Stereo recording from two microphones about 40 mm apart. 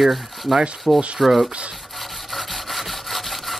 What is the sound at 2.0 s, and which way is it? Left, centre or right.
Wood, centre.